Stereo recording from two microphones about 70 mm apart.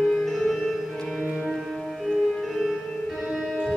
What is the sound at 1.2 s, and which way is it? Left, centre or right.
Music, centre.